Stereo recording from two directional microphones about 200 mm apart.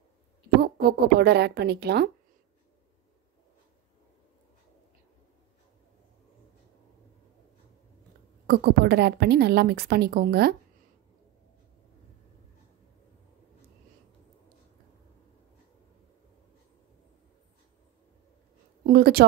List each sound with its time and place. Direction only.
0.6 s a woman's voice: 50° right (ahead or behind)
8.5 s a woman's voice: 55° right (ahead or behind)
18.9 s a woman's voice: 50° right (ahead or behind)